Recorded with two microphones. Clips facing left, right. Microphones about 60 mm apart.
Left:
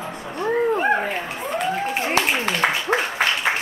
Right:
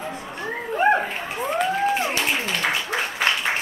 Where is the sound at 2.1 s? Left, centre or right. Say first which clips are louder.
Left 3 dB; left.